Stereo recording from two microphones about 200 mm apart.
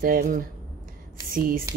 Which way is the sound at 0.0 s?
45° right (ahead or behind).